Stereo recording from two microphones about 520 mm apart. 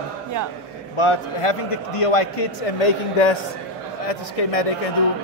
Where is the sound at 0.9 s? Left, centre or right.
Left.